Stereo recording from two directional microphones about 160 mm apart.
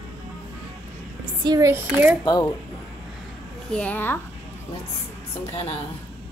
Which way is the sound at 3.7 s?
10° left (ahead or behind).